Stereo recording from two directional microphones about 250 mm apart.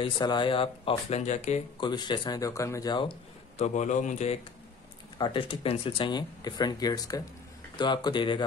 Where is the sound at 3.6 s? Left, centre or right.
Left.